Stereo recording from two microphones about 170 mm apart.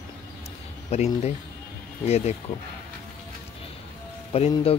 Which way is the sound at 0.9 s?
40° left (ahead or behind).